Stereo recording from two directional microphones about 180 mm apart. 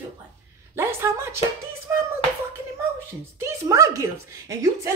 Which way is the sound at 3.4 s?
15° right (ahead or behind).